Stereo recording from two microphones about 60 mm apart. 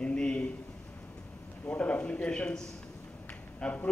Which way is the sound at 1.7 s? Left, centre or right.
Left.